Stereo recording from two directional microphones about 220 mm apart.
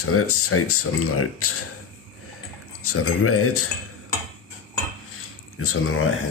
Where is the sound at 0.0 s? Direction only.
80° left.